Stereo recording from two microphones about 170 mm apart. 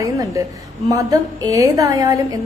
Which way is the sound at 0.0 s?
20° right (ahead or behind).